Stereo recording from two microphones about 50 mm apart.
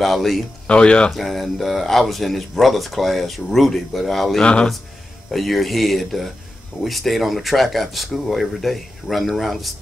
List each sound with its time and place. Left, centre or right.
0.0 s speech: centre
0.7 s speech: left
1.1 s speech: centre
4.4 s speech: centre
5.3 s speech: centre